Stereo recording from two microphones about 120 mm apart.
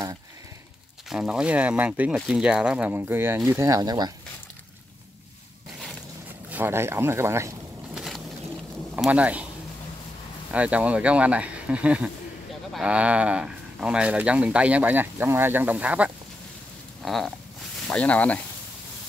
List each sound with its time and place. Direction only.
1.0 s speech: 5° right (ahead or behind); by 4.1 s 35° right (ahead or behind)
6.5 s speech: 20° right (ahead or behind)
7.9 s boat: centre (ahead or behind)
9.1 s speech: 10° right (ahead or behind)
10.5 s speech: 10° right (ahead or behind)
17.0 s speech: centre (ahead or behind)